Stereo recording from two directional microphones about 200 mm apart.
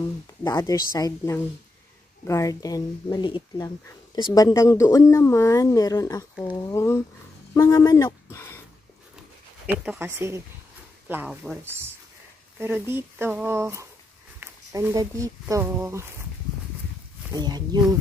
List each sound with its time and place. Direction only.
0.4 s a woman's voice: 15° left (ahead or behind)
9.7 s speech: 10° right (ahead or behind)
17.3 s speech: 20° right (ahead or behind)